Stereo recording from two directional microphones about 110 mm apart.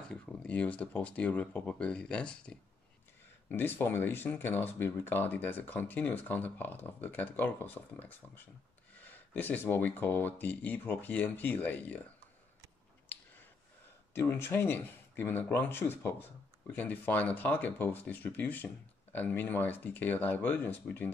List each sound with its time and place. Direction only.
0.1 s speech: 10° left (ahead or behind)
9.3 s speech: 15° left (ahead or behind)
13.1 s a sound: 15° left (ahead or behind)
14.1 s speech: 20° left (ahead or behind)